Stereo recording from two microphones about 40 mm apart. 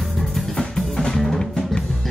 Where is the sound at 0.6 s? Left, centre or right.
Centre.